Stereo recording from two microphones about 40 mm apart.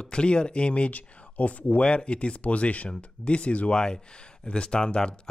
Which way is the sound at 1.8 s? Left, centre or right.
Left.